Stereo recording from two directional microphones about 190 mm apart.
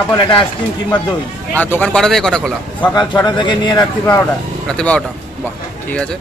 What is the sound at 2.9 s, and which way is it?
Speech, 20° left (ahead or behind).